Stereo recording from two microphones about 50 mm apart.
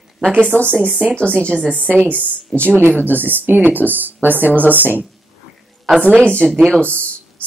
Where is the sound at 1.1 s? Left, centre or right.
Left.